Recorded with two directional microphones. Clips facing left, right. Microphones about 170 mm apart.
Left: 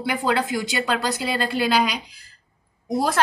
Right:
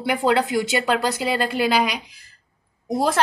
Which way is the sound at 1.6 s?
15° right (ahead or behind).